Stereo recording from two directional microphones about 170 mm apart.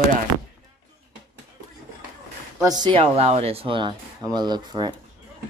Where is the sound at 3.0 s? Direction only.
35° right (ahead or behind).